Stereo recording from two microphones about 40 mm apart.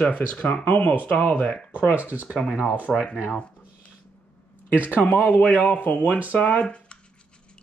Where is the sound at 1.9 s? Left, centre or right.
Right.